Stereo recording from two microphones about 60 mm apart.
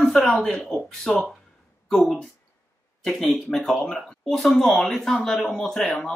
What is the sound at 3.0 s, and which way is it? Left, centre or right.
Speech, centre.